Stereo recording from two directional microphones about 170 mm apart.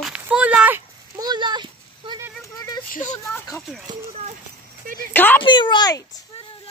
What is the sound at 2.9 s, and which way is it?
Speech, 45° left (ahead or behind).